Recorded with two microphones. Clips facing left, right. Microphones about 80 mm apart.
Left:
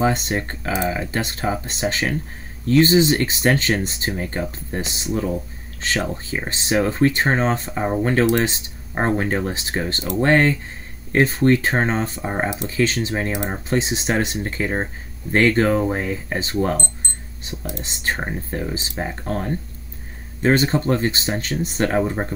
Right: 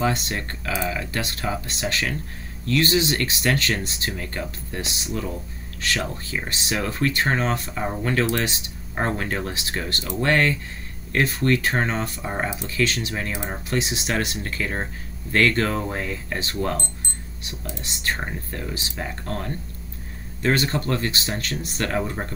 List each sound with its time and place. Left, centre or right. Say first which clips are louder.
0.0 s speech: left 4 dB; left
18.2 s speech: left 5 dB; left